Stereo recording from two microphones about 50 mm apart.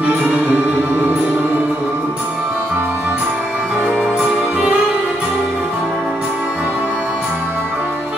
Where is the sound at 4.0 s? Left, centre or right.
Centre.